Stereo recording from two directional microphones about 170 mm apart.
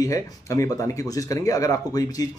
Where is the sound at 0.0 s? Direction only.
20° left (ahead or behind).